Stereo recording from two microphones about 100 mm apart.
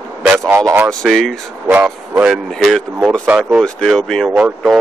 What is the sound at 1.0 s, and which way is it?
Speech, centre (ahead or behind).